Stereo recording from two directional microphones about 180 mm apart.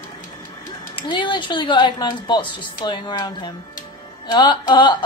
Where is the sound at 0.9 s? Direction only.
25° left (ahead or behind).